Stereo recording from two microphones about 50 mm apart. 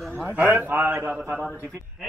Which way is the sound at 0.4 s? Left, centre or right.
Right.